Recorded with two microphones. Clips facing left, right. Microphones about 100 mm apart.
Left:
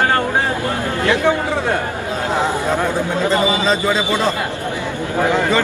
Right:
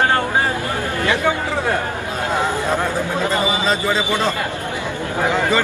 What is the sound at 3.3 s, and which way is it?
Speech, 20° left (ahead or behind).